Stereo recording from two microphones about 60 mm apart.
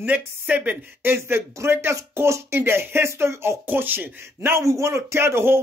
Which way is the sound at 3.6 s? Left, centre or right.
Right.